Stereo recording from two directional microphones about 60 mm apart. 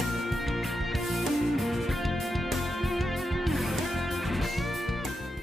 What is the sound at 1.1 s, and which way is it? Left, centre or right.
Music, centre.